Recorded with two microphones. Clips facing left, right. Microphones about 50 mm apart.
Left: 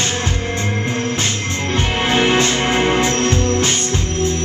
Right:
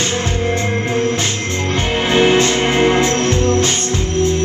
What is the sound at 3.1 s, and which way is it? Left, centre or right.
Music, right.